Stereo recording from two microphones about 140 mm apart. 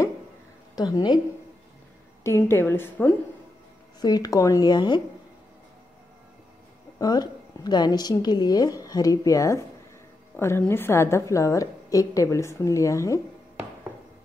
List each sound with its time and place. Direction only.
0.7 s a woman's voice: 30° left (ahead or behind)
2.2 s a woman's voice: 20° left (ahead or behind)
4.0 s a woman's voice: 30° left (ahead or behind)
7.0 s a woman's voice: 30° left (ahead or behind)